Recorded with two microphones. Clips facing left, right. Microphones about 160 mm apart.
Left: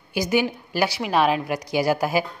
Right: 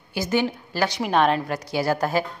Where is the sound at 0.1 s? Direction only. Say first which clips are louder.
Left 1 dB; 10° left (ahead or behind).